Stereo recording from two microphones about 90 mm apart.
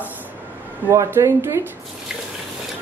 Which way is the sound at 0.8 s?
30° right (ahead or behind).